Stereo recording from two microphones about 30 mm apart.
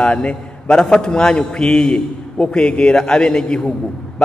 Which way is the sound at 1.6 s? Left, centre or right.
Centre.